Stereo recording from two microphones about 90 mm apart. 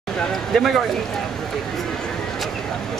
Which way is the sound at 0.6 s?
5° left (ahead or behind).